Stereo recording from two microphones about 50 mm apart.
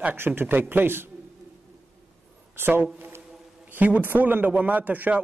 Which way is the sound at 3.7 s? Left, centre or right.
Right.